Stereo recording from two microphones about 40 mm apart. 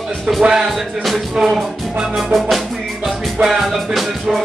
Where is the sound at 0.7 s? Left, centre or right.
Centre.